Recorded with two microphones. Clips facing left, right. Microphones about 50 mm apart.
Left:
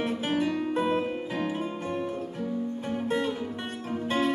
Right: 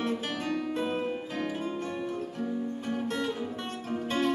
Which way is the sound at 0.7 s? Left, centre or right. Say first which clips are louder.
Left 4 dB; centre.